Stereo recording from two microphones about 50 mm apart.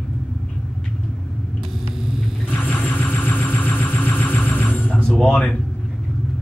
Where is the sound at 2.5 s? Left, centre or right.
Left.